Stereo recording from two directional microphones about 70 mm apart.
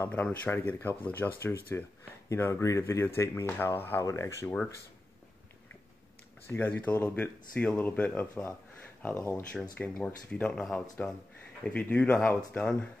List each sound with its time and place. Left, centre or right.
0.1 s speech: left
2.2 s speech: left
3.6 s speech: left
4.0 s speech: left
6.4 s speech: left
6.9 s speech: left
7.5 s speech: centre